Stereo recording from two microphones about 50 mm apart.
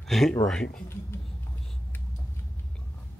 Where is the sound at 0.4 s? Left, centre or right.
Centre.